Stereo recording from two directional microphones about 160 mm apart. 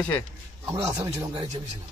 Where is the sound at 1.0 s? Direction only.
40° right (ahead or behind).